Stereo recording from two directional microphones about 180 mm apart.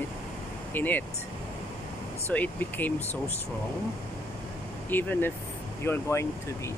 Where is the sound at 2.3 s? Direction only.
10° left (ahead or behind).